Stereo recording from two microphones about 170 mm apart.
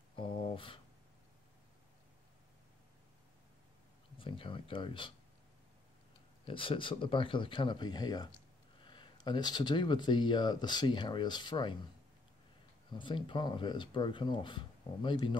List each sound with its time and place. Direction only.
0.1 s a sound: 30° left (ahead or behind)
4.2 s speech: 30° left (ahead or behind)
6.4 s speech: 30° left (ahead or behind)
12.9 s speech: 30° left (ahead or behind)